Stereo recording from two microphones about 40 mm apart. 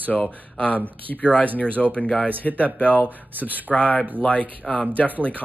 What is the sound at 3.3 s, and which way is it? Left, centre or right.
Speech, right.